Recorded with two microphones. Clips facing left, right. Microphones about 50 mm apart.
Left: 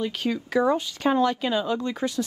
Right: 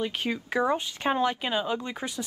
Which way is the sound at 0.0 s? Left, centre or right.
Right.